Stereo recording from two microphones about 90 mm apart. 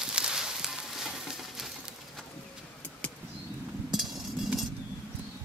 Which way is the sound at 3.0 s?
15° left (ahead or behind).